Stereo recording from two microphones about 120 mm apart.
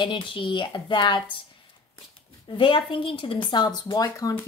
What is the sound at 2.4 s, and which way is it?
A woman's voice, 45° left (ahead or behind).